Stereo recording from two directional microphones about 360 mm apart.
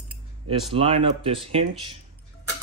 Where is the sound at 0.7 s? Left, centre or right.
Centre.